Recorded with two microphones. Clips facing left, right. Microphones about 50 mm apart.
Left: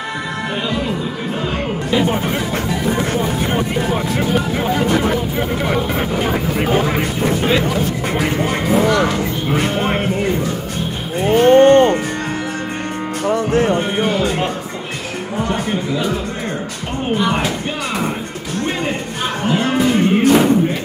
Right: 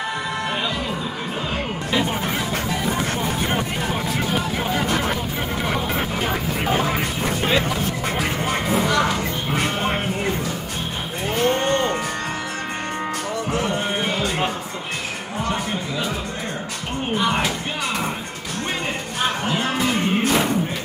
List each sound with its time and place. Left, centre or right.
1.9 s vehicle: centre
11.2 s moo: left
11.5 s moo: left
13.3 s music: left
17.2 s speech: centre
19.4 s music: centre